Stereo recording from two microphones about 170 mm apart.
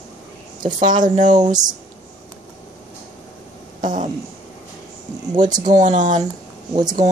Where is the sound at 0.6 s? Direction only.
25° right (ahead or behind).